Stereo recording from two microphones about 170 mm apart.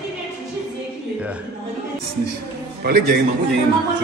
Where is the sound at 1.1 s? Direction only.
5° right (ahead or behind).